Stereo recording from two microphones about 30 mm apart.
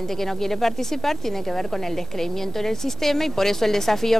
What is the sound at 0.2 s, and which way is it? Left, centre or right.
A woman's voice, centre.